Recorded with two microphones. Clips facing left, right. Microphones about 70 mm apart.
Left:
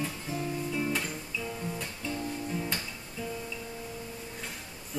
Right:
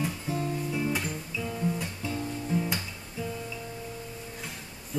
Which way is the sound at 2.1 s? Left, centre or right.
Centre.